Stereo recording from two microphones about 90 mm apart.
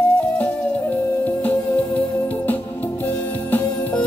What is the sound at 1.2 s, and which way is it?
Music, 20° left (ahead or behind).